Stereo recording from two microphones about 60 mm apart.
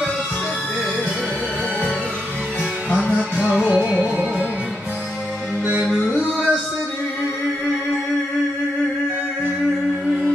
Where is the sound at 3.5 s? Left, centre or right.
Centre.